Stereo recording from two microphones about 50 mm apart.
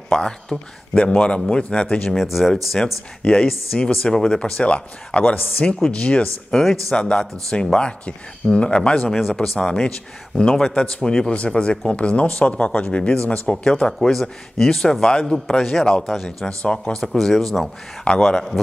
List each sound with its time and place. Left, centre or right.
0.1 s speech: centre
0.9 s speech: left
2.0 s speech: centre
3.2 s speech: centre
6.5 s speech: centre
6.9 s speech: centre
15.3 s speech: centre
18.0 s speech: centre